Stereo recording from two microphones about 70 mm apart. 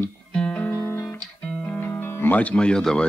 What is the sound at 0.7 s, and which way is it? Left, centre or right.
Music, left.